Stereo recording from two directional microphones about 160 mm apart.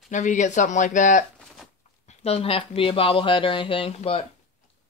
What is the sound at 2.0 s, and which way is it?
Speech, 40° left (ahead or behind).